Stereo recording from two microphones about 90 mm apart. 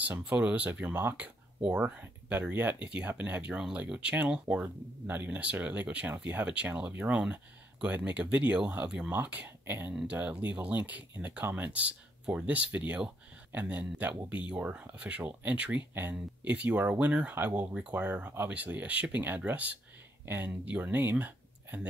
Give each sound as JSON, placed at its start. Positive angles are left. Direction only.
{"t": 0.2, "sound": "speech", "side_deg": -15}